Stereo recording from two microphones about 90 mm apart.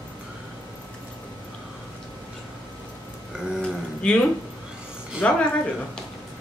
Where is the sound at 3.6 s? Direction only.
10° left (ahead or behind).